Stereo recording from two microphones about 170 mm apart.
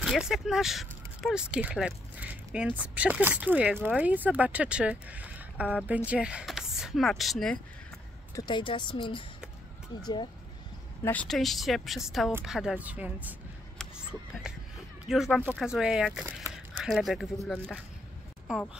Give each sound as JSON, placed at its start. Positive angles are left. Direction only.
{"t": 0.0, "sound": "speech", "side_deg": -5}
{"t": 8.4, "sound": "speech", "side_deg": 25}
{"t": 11.1, "sound": "speech", "side_deg": 5}
{"t": 15.0, "sound": "speech", "side_deg": 0}